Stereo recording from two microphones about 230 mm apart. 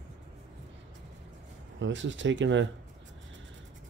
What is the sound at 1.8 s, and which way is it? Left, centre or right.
Speech, right.